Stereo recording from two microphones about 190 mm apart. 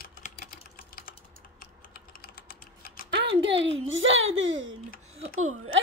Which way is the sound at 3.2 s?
70° right (ahead or behind).